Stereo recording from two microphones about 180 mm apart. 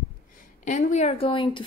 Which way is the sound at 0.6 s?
40° left (ahead or behind).